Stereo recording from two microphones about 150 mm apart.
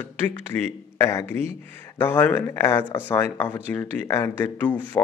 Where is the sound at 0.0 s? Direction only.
15° left (ahead or behind).